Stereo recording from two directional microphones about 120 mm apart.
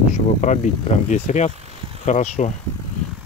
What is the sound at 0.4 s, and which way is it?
Speech, 85° left.